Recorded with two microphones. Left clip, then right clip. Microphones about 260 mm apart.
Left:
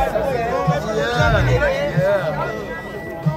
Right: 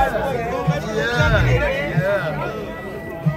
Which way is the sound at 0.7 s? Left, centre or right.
Left.